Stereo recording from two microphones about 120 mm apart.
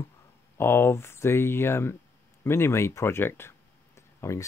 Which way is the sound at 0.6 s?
20° left (ahead or behind).